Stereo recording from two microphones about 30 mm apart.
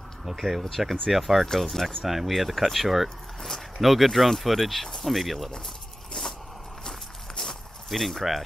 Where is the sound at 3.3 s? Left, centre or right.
Centre.